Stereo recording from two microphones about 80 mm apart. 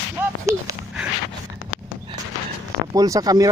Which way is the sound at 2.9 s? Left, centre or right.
Right.